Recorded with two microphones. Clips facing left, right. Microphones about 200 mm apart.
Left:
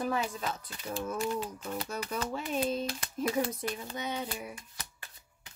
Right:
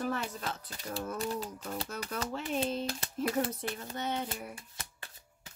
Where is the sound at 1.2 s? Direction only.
35° right (ahead or behind).